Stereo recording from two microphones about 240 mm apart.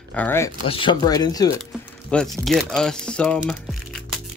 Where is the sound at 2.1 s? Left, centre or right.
Centre.